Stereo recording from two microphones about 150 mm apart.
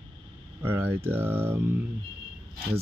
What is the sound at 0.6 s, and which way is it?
Speech, 15° right (ahead or behind).